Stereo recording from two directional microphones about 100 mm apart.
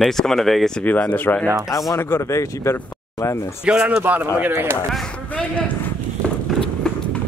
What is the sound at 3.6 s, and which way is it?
A man's voice, 10° right (ahead or behind).